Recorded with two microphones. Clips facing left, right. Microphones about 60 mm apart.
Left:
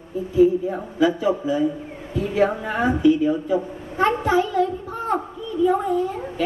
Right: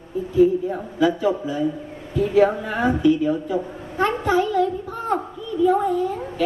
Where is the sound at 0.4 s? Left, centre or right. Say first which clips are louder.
Even; centre.